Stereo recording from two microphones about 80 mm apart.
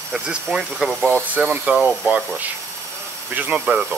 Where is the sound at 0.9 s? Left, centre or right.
Centre.